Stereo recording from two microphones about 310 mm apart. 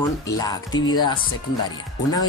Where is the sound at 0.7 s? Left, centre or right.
Left.